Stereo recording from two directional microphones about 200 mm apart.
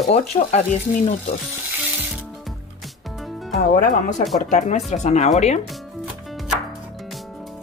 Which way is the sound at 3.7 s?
40° left (ahead or behind).